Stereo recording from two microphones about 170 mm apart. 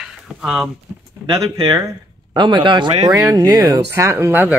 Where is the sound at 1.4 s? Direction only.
20° right (ahead or behind).